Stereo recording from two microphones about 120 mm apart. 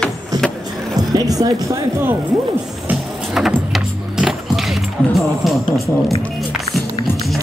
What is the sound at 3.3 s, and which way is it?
Vehicle, centre (ahead or behind).